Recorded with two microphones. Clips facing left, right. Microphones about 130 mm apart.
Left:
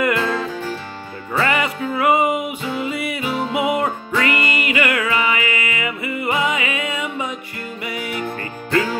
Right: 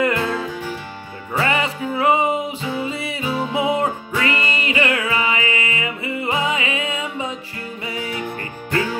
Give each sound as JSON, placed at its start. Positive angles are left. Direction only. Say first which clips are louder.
{"t": 0.2, "sound": "music", "louder": "left 1 dB", "side_deg": -10}
{"t": 1.3, "sound": "music", "louder": "left 1 dB", "side_deg": -25}